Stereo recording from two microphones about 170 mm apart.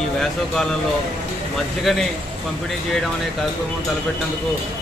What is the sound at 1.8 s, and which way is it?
Speech, centre (ahead or behind).